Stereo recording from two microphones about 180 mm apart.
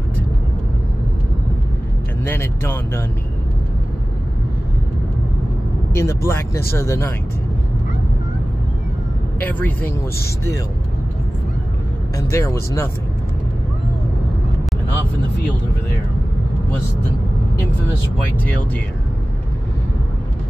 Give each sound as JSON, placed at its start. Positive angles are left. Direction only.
{"t": 2.2, "sound": "speech", "side_deg": 10}
{"t": 5.9, "sound": "speech", "side_deg": 15}
{"t": 9.4, "sound": "speech", "side_deg": 10}
{"t": 12.2, "sound": "speech", "side_deg": 15}